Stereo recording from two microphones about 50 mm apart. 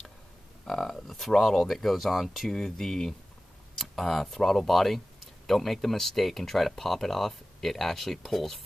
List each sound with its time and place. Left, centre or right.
0.7 s speech: centre